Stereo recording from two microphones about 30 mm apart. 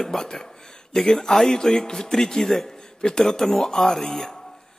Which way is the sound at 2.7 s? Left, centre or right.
Left.